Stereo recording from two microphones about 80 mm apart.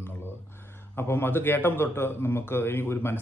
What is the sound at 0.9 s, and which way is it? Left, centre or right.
A man's voice, left.